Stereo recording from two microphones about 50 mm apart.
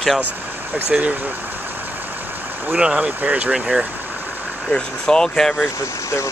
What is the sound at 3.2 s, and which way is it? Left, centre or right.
Speech, right.